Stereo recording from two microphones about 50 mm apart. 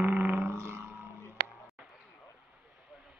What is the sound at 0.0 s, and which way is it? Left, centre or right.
Didgeridoo, right.